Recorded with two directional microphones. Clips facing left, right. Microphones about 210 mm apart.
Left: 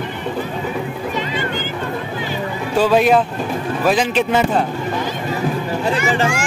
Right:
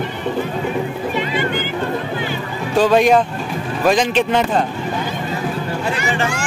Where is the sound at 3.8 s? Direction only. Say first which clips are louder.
Right 2 dB; 5° left (ahead or behind).